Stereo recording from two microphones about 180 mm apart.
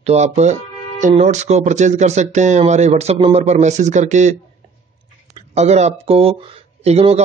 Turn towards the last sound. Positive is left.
turn(degrees=-35)  # may be behind; listen again after turning